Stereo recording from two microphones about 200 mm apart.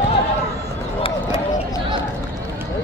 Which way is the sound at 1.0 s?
25° left (ahead or behind).